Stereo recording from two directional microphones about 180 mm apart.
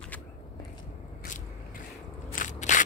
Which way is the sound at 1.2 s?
45° left (ahead or behind).